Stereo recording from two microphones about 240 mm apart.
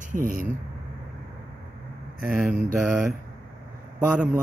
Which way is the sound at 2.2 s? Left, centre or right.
Centre.